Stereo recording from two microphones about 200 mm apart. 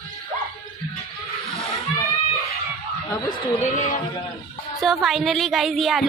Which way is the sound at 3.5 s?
35° left (ahead or behind).